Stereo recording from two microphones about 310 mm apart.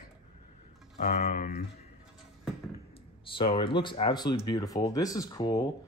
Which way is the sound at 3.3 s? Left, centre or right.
Centre.